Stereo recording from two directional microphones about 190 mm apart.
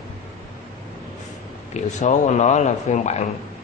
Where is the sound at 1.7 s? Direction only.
40° left (ahead or behind).